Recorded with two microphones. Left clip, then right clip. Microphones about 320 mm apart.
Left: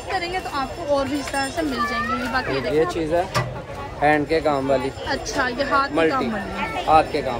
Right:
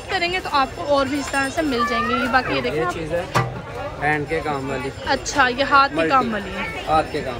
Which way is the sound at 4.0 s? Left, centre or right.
Left.